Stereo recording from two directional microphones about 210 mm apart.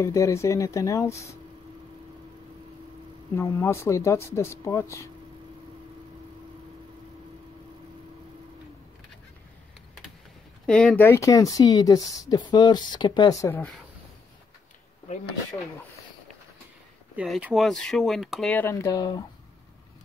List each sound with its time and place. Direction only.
0.0 s speech: 15° left (ahead or behind)
3.3 s speech: 15° left (ahead or behind)
10.7 s speech: 5° left (ahead or behind)
17.1 s speech: 5° right (ahead or behind); by 19.2 s 20° left (ahead or behind)